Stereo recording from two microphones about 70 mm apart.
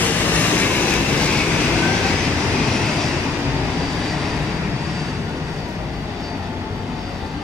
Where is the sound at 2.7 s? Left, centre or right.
Centre.